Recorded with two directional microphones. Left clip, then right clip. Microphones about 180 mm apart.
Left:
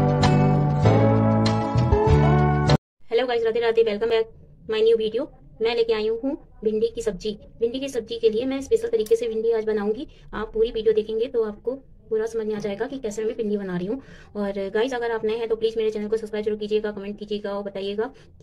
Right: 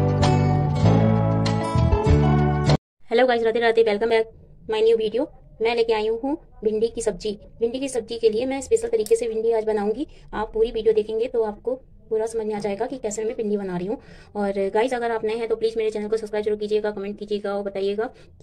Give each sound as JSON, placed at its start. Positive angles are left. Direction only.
{"t": 0.2, "sound": "music", "side_deg": 0}
{"t": 3.1, "sound": "a woman's voice", "side_deg": -20}